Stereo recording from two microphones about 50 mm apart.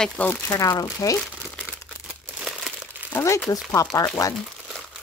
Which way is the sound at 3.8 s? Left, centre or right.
Left.